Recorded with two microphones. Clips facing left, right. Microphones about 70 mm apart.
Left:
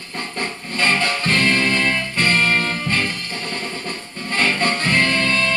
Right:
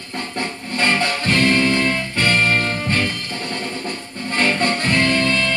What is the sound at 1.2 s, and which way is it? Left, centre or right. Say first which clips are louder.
Music: right 2 dB; left.